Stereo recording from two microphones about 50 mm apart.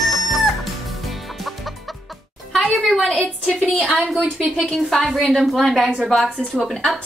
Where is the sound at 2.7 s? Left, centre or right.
Centre.